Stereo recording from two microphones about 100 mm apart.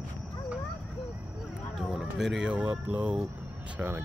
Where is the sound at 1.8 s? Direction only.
5° right (ahead or behind).